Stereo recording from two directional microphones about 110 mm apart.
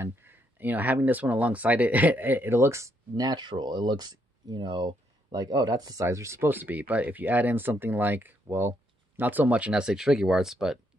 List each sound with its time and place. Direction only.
0.0 s speech: 20° right (ahead or behind); by 10.8 s 5° right (ahead or behind)